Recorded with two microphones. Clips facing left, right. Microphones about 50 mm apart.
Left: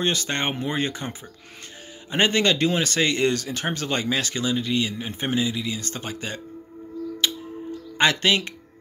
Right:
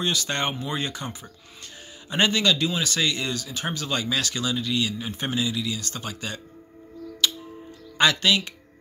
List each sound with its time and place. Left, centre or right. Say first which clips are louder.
0.0 s speech: left 1 dB; left
7.2 s music: right 1 dB; left
8.0 s speech: left 1 dB; left